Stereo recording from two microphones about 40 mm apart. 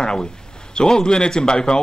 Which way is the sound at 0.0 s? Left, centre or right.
Centre.